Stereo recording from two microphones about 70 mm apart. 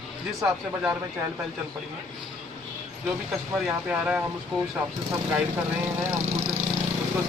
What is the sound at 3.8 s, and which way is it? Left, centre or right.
Speech, centre.